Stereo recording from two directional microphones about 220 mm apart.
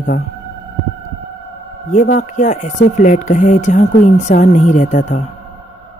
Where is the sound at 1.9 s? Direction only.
35° left (ahead or behind).